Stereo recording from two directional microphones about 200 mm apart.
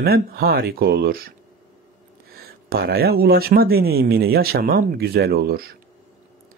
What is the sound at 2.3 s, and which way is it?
Speech, 50° right (ahead or behind).